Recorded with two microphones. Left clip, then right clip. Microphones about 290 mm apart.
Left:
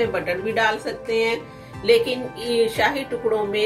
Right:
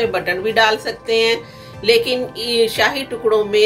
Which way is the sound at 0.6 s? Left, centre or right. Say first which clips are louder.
Right 7 dB; right.